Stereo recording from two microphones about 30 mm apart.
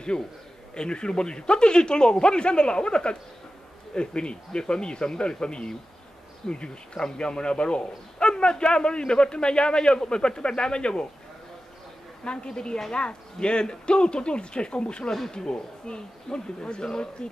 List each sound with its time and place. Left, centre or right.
0.1 s a man's voice: centre
0.7 s speech: left
12.3 s speech: left
12.9 s speech: left